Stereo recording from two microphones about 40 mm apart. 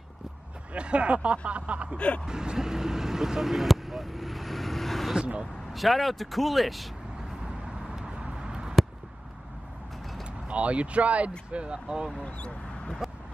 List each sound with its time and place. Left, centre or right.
0.7 s speech: right
2.0 s speech: left
2.2 s vehicle: centre
5.2 s speech: right
5.7 s speech: centre
7.4 s vehicle: centre
8.3 s a sound: centre
10.2 s speech: right
12.1 s speech: left